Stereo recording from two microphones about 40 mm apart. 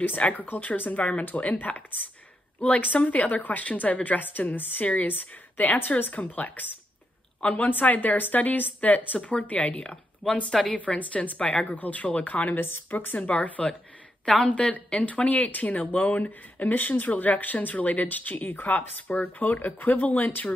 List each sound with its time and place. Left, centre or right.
0.0 s speech: left
10.2 s speech: centre
11.0 s speech: left
11.7 s speech: left
12.5 s speech: left
12.9 s speech: left
16.3 s speech: left